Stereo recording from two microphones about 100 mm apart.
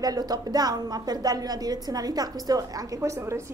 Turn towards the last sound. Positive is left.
turn(degrees=-30)  # may be behind; listen again after turning